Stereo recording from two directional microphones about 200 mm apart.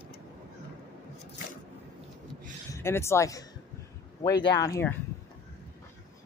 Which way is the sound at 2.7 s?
15° left (ahead or behind).